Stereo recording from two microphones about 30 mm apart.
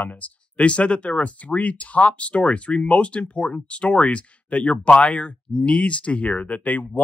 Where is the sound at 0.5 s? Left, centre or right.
Left.